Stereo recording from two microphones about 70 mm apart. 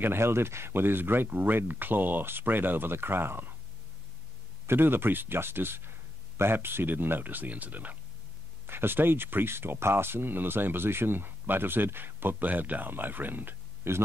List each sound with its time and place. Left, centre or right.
0.0 s speech: right
4.6 s speech: right